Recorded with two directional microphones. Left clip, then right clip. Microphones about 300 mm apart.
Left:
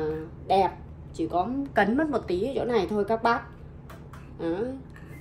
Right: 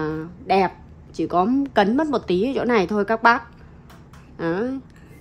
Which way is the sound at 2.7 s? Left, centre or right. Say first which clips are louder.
Right 5 dB; centre.